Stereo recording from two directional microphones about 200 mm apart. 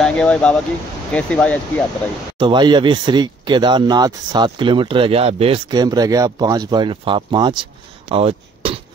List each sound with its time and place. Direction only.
0.0 s speech: 5° left (ahead or behind)
2.3 s speech: 25° right (ahead or behind)